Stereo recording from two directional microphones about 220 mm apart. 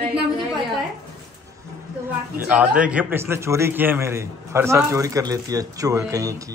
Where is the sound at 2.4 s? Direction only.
5° right (ahead or behind).